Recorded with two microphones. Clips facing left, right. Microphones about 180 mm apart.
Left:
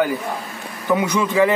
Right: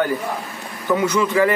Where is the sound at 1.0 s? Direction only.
15° left (ahead or behind).